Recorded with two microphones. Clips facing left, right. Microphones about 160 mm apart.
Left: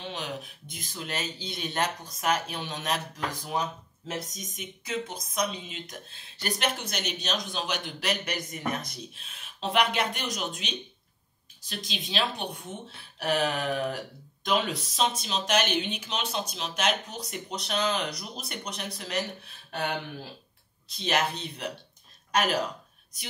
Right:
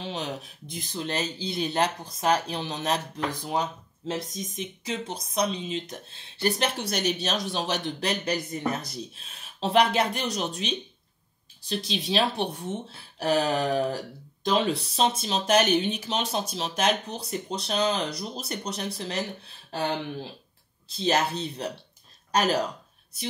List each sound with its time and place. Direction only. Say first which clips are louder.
0.0 s speech: right 3 dB; 30° right (ahead or behind)
4.1 s speech: right 4 dB; 30° right (ahead or behind)